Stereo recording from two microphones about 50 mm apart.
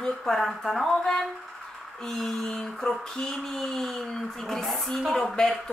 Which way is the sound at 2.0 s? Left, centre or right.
Centre.